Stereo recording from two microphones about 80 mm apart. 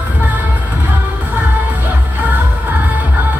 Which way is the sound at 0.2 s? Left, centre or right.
Right.